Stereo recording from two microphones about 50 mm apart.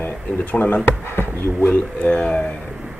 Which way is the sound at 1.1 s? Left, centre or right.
Left.